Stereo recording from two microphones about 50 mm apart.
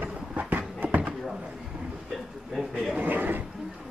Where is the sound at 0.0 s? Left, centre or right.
Right.